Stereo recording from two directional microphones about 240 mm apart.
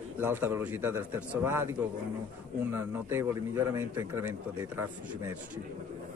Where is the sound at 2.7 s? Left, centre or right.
Centre.